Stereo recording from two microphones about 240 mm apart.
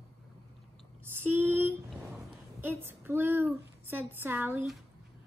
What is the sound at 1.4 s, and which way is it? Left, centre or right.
A woman's voice, centre.